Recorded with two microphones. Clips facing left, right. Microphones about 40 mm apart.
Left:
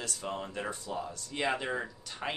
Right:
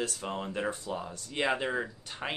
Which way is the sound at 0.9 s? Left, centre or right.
Centre.